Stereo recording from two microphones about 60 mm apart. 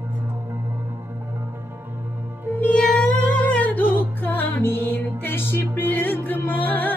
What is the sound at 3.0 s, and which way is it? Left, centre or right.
Music, left.